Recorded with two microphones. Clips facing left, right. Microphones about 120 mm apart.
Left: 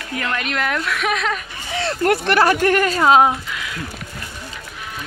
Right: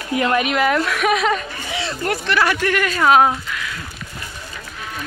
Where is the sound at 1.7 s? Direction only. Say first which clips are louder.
Left 5 dB; 55° left (ahead or behind).